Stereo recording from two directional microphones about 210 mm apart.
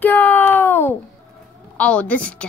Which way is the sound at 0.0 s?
10° left (ahead or behind).